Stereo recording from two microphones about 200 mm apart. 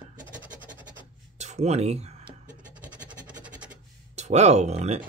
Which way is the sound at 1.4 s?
35° right (ahead or behind).